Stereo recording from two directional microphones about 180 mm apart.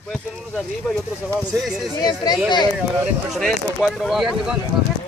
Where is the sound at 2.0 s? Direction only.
20° left (ahead or behind).